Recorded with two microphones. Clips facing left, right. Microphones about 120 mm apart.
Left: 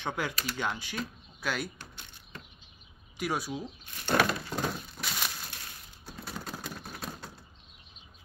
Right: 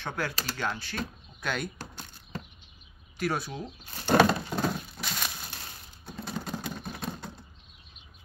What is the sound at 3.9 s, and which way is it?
Wood, 35° right (ahead or behind).